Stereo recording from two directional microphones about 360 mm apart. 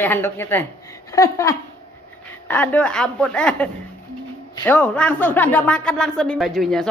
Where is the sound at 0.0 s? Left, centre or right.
Centre.